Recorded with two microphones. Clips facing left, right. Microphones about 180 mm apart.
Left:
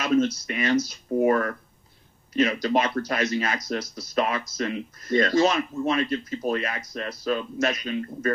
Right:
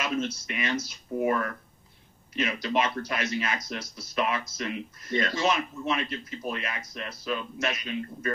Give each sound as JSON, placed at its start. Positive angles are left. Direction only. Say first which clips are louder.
{"t": 0.2, "sound": "speech", "louder": "left 7 dB", "side_deg": 40}